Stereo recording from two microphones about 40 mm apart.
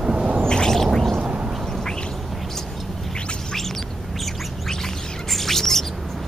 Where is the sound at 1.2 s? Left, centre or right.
Right.